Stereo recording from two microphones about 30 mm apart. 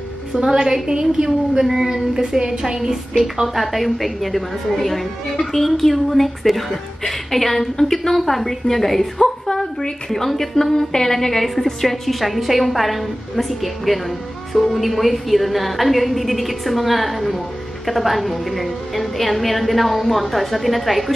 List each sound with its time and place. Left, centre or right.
0.3 s a woman's voice: right
1.7 s a sound: centre
2.1 s a woman's voice: centre
3.4 s a woman's voice: centre